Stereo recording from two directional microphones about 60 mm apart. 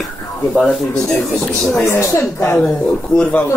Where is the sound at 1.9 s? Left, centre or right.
Left.